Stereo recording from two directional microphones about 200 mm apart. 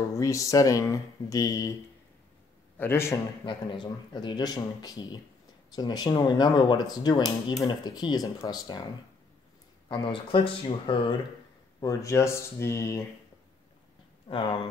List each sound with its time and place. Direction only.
0.1 s speech: 15° left (ahead or behind)
2.8 s speech: 10° left (ahead or behind)
3.4 s speech: 25° left (ahead or behind)
9.8 s speech: 25° left (ahead or behind)
11.8 s speech: 15° left (ahead or behind)
14.3 s speech: 25° left (ahead or behind)